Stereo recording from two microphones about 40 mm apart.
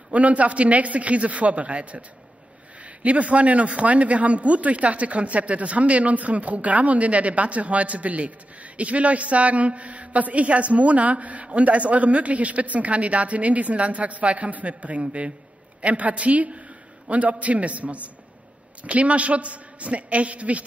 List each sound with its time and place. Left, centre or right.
0.1 s a man's voice: right